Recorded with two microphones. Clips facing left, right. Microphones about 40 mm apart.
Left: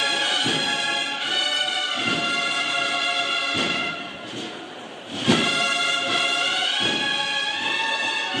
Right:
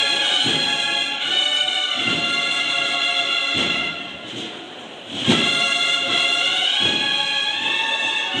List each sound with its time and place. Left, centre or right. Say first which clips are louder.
0.0 s music: right 3 dB; right
5.2 s music: right 2 dB; right